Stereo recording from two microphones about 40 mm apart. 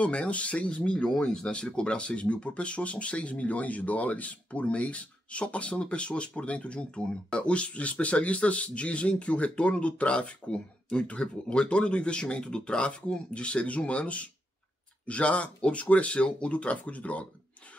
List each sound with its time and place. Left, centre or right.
0.0 s speech: left
1.1 s speech: centre; by 17.3 s left